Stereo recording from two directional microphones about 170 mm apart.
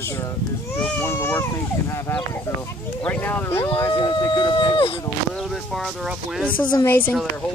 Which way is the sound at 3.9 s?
25° left (ahead or behind).